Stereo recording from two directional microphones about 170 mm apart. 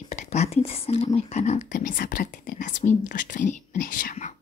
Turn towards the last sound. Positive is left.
turn(degrees=50)  # may be behind; listen again after turning